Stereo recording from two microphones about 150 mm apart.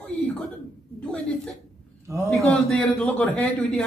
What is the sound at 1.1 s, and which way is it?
Speech, 5° left (ahead or behind).